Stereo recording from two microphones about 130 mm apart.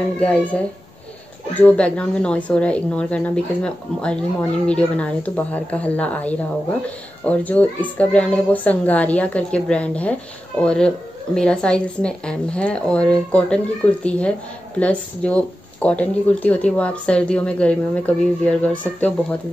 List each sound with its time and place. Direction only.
0.2 s speech: 10° left (ahead or behind)